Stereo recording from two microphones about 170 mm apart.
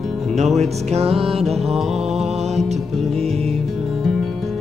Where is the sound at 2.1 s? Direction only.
40° right (ahead or behind).